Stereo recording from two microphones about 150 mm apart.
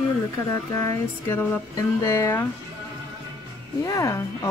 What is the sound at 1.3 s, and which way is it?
Speech, 15° left (ahead or behind).